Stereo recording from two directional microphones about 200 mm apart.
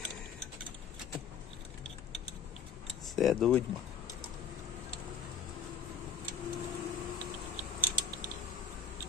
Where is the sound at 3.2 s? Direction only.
Centre (ahead or behind).